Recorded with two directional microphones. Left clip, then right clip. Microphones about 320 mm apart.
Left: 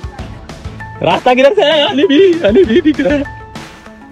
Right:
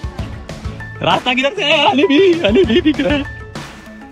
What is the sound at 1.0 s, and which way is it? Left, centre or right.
Speech, centre.